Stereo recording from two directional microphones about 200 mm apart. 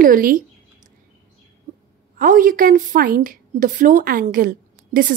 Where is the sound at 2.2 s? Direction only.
45° right (ahead or behind).